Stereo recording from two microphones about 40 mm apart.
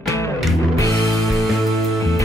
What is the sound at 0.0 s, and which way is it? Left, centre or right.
Music, centre.